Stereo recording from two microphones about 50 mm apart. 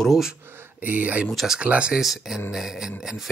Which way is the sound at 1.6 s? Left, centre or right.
Right.